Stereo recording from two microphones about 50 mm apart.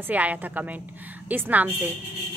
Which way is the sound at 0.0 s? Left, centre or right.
Right.